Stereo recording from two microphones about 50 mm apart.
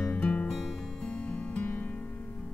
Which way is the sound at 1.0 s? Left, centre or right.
Left.